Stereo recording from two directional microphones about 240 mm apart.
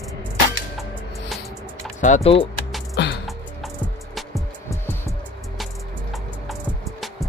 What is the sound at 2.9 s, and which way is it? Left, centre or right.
Music, left.